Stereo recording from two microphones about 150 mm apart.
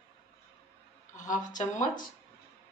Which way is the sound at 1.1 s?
55° left (ahead or behind).